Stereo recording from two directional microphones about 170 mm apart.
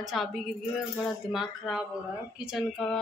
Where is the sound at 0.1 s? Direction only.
Centre (ahead or behind).